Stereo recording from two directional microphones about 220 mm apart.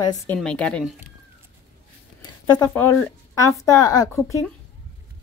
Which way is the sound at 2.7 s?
5° left (ahead or behind).